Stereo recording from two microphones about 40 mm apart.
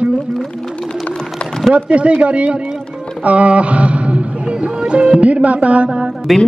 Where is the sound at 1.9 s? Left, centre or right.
Right.